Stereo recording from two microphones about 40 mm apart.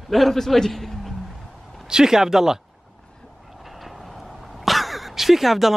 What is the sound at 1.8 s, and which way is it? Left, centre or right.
Speech, centre.